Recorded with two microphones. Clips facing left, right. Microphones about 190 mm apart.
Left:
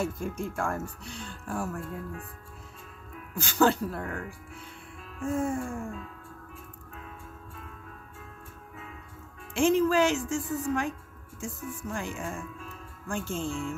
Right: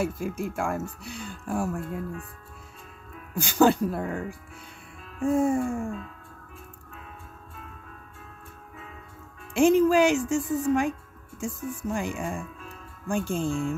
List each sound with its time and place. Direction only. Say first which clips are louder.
0.0 s speech: right 3 dB; 5° right (ahead or behind)
3.3 s speech: right 4 dB; 15° right (ahead or behind)
5.2 s music: right 6 dB; 35° right (ahead or behind)
5.5 s speech: right 6 dB; 15° right (ahead or behind)
9.5 s speech: right 4 dB; 15° right (ahead or behind)